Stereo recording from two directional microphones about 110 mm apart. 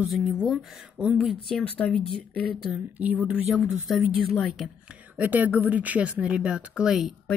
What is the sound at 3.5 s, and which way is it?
Speech, centre (ahead or behind).